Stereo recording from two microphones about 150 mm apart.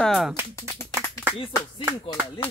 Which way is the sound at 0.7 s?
25° left (ahead or behind).